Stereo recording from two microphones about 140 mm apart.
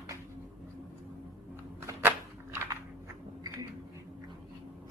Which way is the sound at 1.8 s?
15° right (ahead or behind).